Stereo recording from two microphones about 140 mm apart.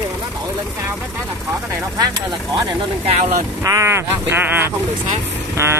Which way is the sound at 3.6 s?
20° right (ahead or behind).